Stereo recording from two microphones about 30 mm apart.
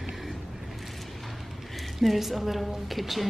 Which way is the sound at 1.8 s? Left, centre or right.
Centre.